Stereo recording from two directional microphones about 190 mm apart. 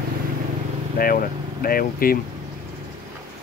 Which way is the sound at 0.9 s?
50° left (ahead or behind).